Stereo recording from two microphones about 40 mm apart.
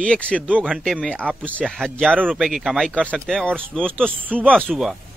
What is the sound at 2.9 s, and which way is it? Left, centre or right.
Speech, left.